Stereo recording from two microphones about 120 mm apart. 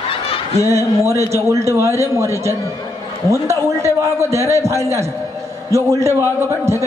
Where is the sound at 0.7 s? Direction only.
25° right (ahead or behind).